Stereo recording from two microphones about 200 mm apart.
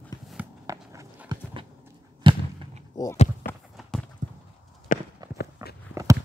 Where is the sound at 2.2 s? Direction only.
25° right (ahead or behind).